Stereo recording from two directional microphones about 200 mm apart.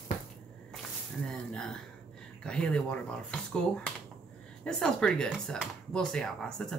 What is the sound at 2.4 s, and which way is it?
Speech, 5° left (ahead or behind).